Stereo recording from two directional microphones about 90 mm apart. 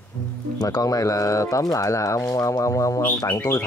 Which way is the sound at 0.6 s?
45° left (ahead or behind).